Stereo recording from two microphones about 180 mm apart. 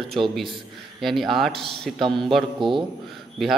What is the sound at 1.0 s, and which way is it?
Speech, centre (ahead or behind).